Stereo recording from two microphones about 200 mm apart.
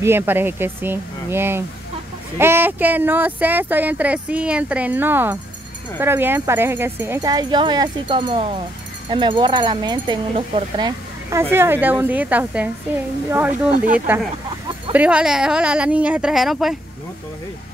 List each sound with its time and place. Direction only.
0.0 s speech: 10° right (ahead or behind)